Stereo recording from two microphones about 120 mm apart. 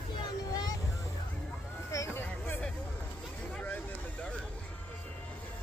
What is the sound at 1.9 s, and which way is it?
Vehicle, 20° left (ahead or behind).